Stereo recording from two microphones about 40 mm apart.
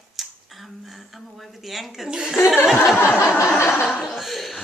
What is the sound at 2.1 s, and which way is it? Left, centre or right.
Speech, centre.